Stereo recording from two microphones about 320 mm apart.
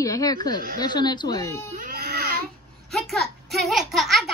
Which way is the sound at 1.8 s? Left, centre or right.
Right.